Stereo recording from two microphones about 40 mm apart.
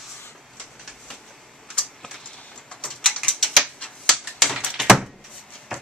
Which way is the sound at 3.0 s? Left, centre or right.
Centre.